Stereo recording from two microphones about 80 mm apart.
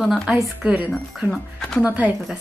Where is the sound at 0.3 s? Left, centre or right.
Centre.